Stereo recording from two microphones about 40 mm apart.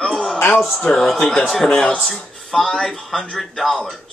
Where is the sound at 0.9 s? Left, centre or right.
Centre.